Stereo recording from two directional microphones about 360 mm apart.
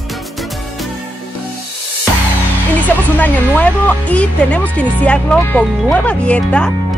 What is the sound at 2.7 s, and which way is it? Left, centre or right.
Speech, centre.